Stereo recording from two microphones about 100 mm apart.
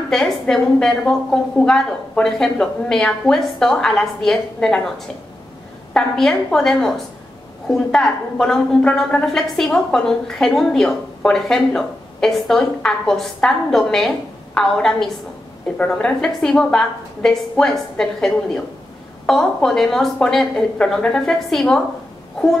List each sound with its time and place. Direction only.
0.1 s a woman's voice: 5° left (ahead or behind)